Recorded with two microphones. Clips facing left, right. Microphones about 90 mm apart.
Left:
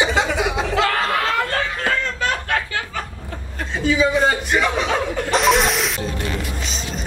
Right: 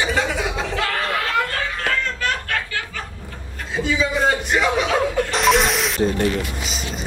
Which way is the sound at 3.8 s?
Centre (ahead or behind).